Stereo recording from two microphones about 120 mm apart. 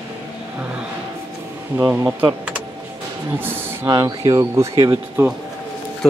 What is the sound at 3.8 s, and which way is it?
Speech, 35° right (ahead or behind).